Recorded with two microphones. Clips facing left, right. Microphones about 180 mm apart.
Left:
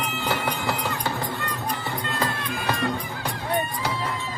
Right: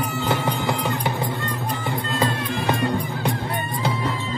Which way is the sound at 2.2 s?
20° right (ahead or behind).